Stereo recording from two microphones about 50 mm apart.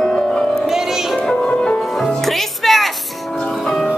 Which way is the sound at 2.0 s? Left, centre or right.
Centre.